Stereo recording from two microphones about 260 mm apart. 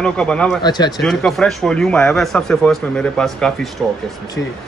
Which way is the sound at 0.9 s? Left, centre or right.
Centre.